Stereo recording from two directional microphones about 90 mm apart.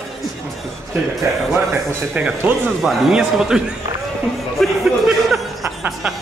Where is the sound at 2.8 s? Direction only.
5° right (ahead or behind).